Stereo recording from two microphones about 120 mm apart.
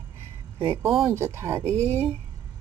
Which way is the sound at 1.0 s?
20° right (ahead or behind).